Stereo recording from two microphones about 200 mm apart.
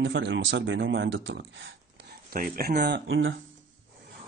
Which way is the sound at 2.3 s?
45° right (ahead or behind).